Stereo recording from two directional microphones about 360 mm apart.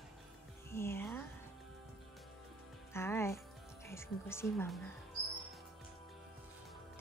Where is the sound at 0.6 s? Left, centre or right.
Centre.